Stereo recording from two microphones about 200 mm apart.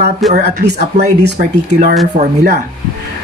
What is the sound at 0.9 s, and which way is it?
Speech, 55° right (ahead or behind).